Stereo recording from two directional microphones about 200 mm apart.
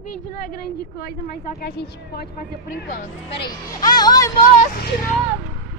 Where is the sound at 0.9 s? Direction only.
50° left (ahead or behind).